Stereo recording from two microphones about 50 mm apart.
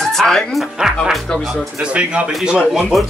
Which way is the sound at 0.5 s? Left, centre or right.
Centre.